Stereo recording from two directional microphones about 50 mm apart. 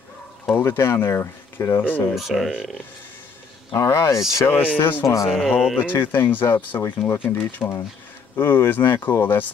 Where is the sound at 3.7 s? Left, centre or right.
Left.